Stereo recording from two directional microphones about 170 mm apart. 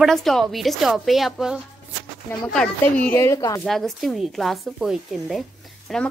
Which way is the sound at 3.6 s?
Centre (ahead or behind).